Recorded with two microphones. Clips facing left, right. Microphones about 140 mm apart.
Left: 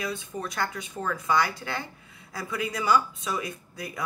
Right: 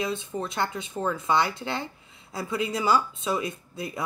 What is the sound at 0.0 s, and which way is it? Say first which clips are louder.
Speech: right 3 dB; 25° right (ahead or behind).